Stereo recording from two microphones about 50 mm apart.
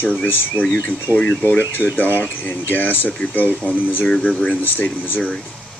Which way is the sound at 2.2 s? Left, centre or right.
Left.